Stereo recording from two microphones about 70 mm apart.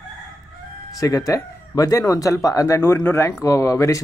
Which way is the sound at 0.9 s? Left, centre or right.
Left.